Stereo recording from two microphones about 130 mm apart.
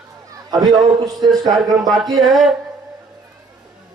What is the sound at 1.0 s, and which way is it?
Speech, 30° right (ahead or behind).